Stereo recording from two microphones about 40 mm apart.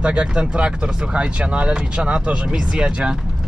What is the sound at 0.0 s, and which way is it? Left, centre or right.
Speech, right.